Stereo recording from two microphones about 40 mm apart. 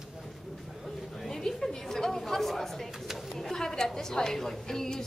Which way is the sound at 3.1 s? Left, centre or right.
Centre.